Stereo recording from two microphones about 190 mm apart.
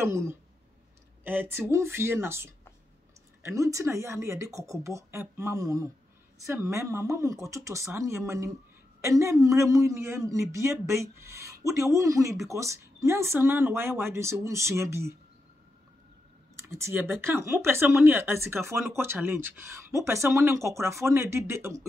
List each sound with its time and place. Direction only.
0.0 s speech: 15° right (ahead or behind)
16.6 s speech: 15° right (ahead or behind)